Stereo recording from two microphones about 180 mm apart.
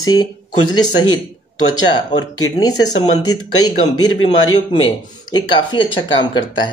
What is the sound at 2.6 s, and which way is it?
Speech, 20° left (ahead or behind).